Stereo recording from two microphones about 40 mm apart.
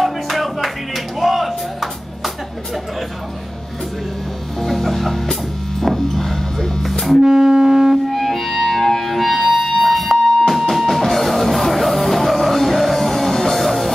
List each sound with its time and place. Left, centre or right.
0.0 s music: centre
4.6 s music: centre
7.2 s music: centre
8.1 s music: centre